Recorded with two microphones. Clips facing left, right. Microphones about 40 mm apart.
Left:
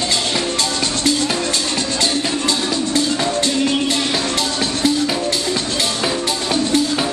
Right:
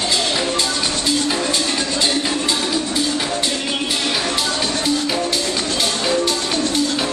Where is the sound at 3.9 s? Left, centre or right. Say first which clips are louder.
Left 1 dB; centre.